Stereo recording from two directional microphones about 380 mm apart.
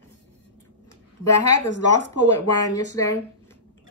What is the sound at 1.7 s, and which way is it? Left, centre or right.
Speech, left.